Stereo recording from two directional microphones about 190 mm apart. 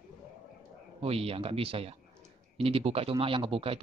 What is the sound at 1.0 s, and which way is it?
Speech, 30° right (ahead or behind).